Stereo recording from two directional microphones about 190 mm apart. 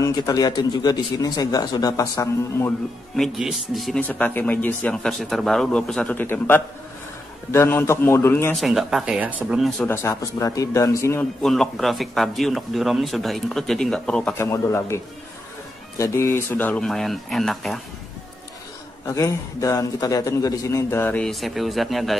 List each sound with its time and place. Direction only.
0.0 s speech: 20° left (ahead or behind)
3.2 s a man's voice: centre (ahead or behind)
8.5 s speech: centre (ahead or behind)
9.8 s a man's voice: 15° left (ahead or behind)
11.4 s a man's voice: centre (ahead or behind)
16.0 s a man's voice: 15° left (ahead or behind)
19.0 s a man's voice: 15° left (ahead or behind); by 22.1 s centre (ahead or behind)